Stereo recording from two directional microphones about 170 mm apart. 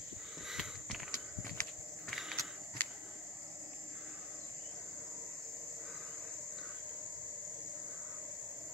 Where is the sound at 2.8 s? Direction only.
10° left (ahead or behind).